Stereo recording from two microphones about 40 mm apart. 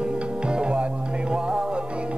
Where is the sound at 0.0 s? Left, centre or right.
Right.